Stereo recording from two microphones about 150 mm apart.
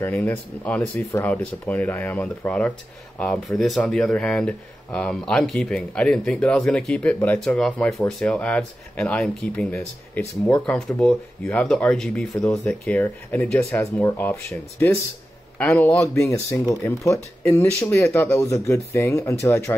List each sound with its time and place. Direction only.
0.0 s speech: 10° left (ahead or behind)